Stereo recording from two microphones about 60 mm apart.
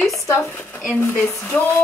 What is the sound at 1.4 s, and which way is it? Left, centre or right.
Speech, left.